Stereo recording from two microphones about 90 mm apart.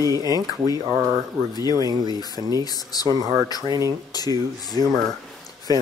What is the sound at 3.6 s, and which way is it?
Speech, 45° right (ahead or behind).